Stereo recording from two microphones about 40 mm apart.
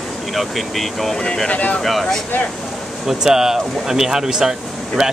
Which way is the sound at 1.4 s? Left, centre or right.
Left.